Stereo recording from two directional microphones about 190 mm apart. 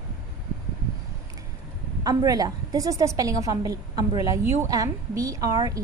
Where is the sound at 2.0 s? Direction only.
20° right (ahead or behind).